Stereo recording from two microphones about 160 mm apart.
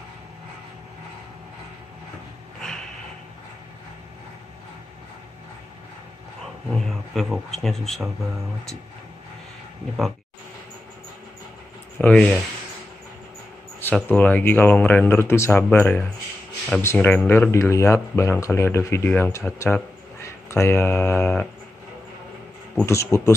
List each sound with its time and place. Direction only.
6.4 s a man's voice: centre (ahead or behind)
12.0 s speech: 5° left (ahead or behind)
13.7 s speech: 10° left (ahead or behind)
23.0 s speech: 15° left (ahead or behind)